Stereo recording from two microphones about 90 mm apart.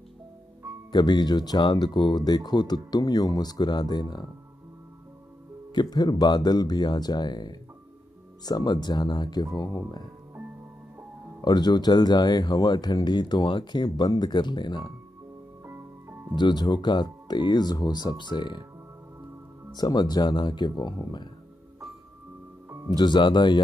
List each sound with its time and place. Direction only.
0.9 s speech: 50° left (ahead or behind)
5.8 s speech: 50° left (ahead or behind)
11.4 s speech: 50° left (ahead or behind)
15.6 s music: 25° right (ahead or behind)
16.3 s speech: 50° left (ahead or behind)
19.8 s speech: 50° left (ahead or behind)
22.8 s speech: 55° left (ahead or behind)